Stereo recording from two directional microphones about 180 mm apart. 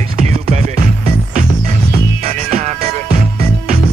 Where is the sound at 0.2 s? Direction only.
35° right (ahead or behind).